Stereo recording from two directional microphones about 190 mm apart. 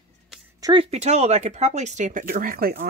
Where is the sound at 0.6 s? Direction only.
20° right (ahead or behind).